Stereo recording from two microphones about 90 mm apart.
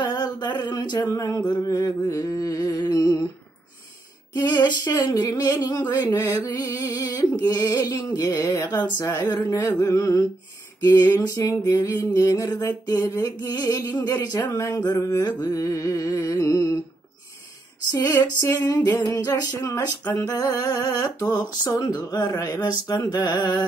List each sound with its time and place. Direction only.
0.0 s a sound: 50° left (ahead or behind)
0.7 s music: 50° left (ahead or behind)
1.5 s speech: 45° left (ahead or behind)
4.3 s speech: 50° left (ahead or behind)
7.4 s music: 40° left (ahead or behind)
8.6 s speech: 55° left (ahead or behind)
9.0 s music: 40° left (ahead or behind)
10.9 s music: 35° left (ahead or behind)
17.9 s female singing: 30° left (ahead or behind)
18.9 s music: 35° left (ahead or behind)
19.6 s female singing: 25° left (ahead or behind)
20.2 s speech: 45° left (ahead or behind)